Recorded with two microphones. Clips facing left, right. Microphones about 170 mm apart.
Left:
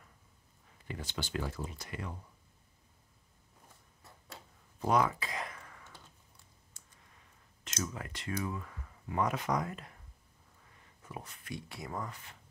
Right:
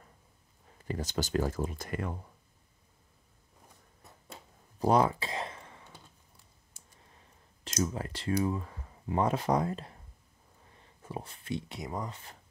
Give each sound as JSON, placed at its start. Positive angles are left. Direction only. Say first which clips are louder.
{"t": 0.8, "sound": "speech", "louder": "right 7 dB", "side_deg": -40}
{"t": 4.7, "sound": "a sound", "louder": "right 4 dB", "side_deg": -30}
{"t": 7.1, "sound": "speech", "louder": "right 3 dB", "side_deg": -30}